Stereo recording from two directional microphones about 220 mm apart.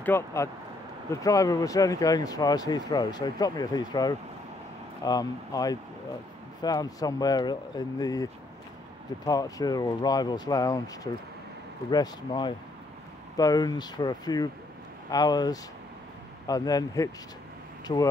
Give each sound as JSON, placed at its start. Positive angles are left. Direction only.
{"t": 0.0, "sound": "speech", "side_deg": 10}
{"t": 11.9, "sound": "speech", "side_deg": 20}